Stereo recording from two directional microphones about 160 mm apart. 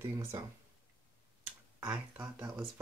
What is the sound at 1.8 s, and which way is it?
Speech, 10° right (ahead or behind).